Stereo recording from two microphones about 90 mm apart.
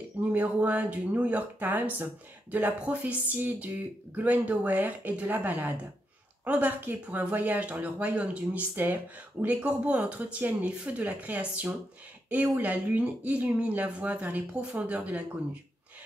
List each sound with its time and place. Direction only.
0.2 s speech: 20° right (ahead or behind)